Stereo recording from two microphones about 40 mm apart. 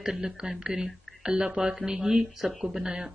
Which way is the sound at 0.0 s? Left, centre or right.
Centre.